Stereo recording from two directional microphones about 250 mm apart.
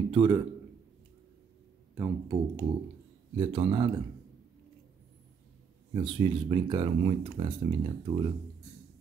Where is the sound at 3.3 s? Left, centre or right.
Right.